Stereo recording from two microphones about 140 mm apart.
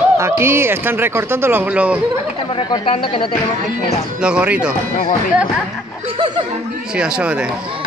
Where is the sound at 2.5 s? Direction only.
40° left (ahead or behind).